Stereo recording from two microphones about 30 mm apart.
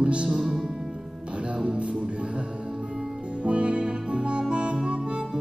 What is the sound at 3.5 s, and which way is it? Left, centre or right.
Music, right.